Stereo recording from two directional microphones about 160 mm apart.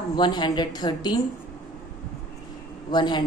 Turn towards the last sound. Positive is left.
turn(degrees=30)  # may be behind; listen again after turning